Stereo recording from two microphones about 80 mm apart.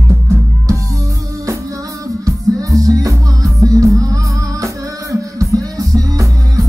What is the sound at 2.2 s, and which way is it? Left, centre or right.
Music, right.